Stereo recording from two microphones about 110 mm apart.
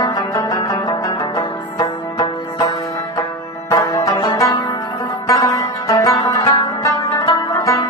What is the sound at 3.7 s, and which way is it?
Music, 30° left (ahead or behind).